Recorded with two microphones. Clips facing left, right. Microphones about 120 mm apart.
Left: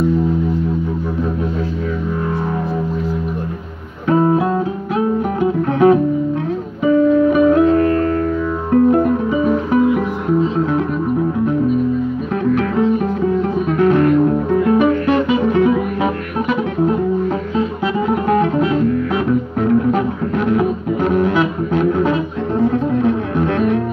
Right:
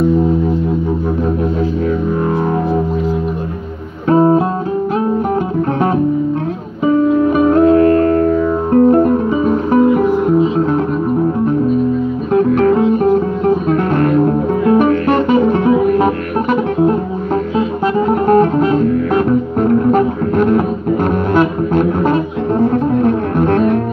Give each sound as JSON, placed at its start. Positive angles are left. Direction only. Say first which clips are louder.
{"t": 7.3, "sound": "music", "louder": "right 2 dB", "side_deg": -45}
{"t": 12.4, "sound": "music", "louder": "right 6 dB", "side_deg": -40}
{"t": 18.0, "sound": "music", "louder": "right 5 dB", "side_deg": -45}